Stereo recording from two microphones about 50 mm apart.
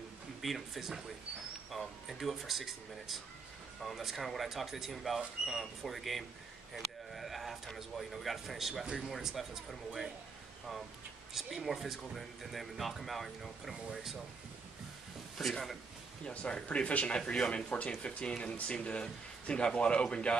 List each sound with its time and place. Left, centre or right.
0.4 s speech: centre
6.7 s a sound: centre
8.9 s speech: centre
11.3 s speech: centre
15.3 s speech: centre
16.3 s speech: left